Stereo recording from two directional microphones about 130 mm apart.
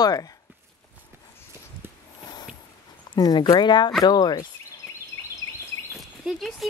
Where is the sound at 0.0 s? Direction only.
30° left (ahead or behind).